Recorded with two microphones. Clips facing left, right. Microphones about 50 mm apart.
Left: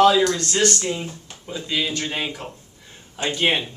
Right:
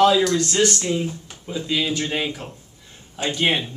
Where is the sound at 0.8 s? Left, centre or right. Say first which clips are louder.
Right 3 dB; centre.